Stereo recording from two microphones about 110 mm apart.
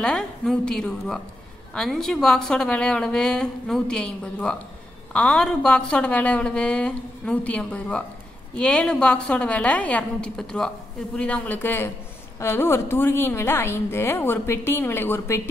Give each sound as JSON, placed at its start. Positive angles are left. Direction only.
{"t": 0.0, "sound": "a woman's voice", "side_deg": 10}